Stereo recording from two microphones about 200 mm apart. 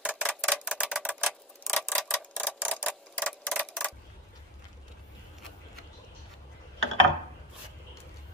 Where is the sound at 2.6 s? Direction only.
5° right (ahead or behind).